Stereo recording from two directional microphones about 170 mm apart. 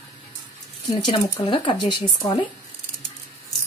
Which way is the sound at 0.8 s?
25° left (ahead or behind).